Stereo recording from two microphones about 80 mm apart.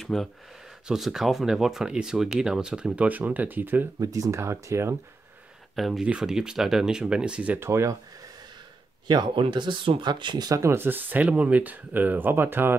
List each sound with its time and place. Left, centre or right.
0.0 s speech: centre; by 3.9 s right
4.0 s speech: right
5.8 s speech: centre
7.5 s speech: right
9.0 s speech: right
10.5 s speech: right